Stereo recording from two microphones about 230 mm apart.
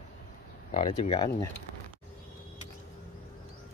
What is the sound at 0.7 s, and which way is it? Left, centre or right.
Speech, left.